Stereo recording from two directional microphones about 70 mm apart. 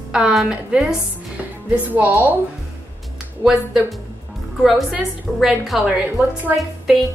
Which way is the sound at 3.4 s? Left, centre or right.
Centre.